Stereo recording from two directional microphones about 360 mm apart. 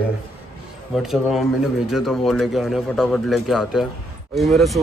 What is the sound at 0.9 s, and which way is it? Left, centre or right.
Speech, centre.